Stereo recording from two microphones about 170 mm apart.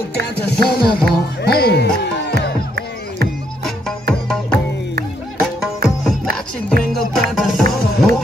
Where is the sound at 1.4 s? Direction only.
70° left (ahead or behind).